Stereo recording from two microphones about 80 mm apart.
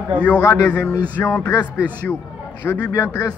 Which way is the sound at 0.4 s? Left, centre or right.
Left.